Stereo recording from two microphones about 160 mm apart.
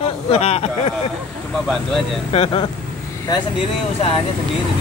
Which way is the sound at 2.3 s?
35° left (ahead or behind).